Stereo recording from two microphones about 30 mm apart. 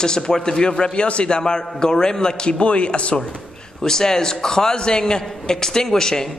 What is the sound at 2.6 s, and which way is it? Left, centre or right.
Speech, left.